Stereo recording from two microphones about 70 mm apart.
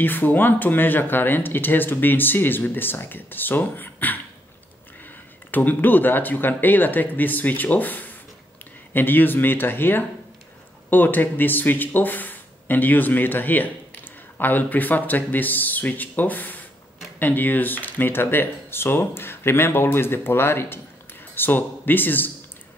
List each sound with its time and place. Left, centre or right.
0.0 s speech: left